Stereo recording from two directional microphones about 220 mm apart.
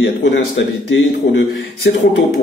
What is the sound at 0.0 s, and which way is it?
A man's voice, 50° left (ahead or behind).